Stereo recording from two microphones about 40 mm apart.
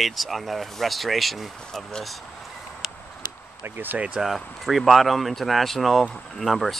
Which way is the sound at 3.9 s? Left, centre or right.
Right.